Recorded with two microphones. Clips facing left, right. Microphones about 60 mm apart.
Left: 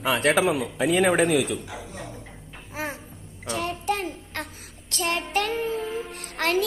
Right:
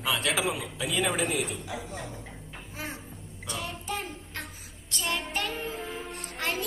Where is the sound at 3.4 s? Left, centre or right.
Left.